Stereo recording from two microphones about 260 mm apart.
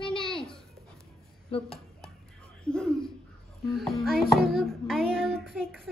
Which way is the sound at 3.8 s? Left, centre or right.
Centre.